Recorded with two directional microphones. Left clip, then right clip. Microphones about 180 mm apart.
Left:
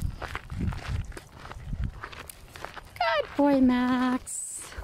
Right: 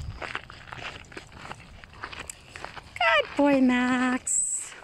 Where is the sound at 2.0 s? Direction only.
50° right (ahead or behind).